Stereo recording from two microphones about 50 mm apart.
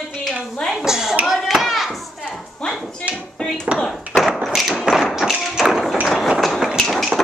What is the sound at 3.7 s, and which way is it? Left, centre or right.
Tap, right.